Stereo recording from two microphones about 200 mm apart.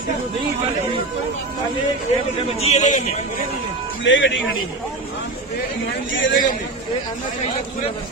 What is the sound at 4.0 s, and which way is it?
Speech, 70° left (ahead or behind).